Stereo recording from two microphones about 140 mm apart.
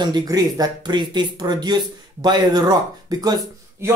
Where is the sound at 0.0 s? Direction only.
30° right (ahead or behind).